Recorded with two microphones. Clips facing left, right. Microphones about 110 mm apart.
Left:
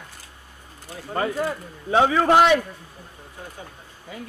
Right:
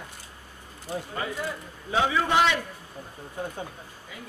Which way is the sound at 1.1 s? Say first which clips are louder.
Left 11 dB; 55° left (ahead or behind).